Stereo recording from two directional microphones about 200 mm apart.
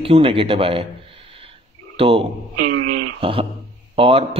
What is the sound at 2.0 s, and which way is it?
A man's voice, 30° right (ahead or behind).